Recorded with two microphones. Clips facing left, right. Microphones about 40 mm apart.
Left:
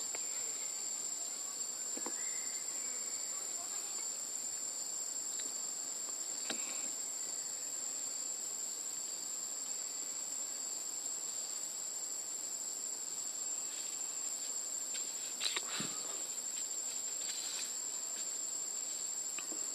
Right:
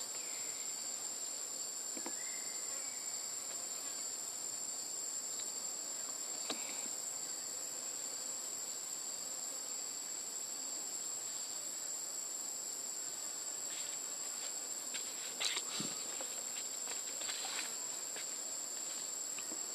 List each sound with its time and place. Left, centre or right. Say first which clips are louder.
15.4 s walk: left 1 dB; centre
17.3 s insect: right 4 dB; right